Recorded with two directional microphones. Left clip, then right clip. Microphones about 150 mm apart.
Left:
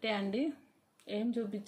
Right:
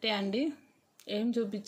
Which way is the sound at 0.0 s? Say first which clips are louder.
Right 3 dB; 25° right (ahead or behind).